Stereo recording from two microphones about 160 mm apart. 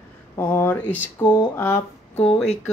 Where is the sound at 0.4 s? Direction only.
15° left (ahead or behind).